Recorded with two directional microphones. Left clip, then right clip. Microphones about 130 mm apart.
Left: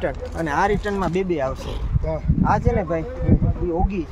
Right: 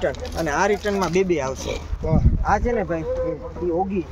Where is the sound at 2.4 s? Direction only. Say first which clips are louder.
Left 1 dB; 50° left (ahead or behind).